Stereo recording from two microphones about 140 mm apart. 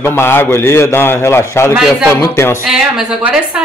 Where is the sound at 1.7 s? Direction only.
5° right (ahead or behind).